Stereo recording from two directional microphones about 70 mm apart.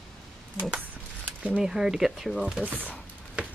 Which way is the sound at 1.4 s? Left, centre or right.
Centre.